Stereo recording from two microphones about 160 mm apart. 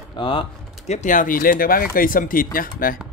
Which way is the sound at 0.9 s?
50° left (ahead or behind).